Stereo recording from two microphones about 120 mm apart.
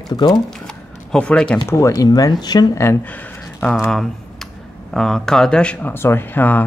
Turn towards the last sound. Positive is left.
turn(degrees=15)  # may be behind; listen again after turning